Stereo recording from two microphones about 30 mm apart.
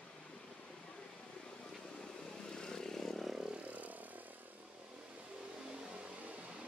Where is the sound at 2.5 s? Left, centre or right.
Centre.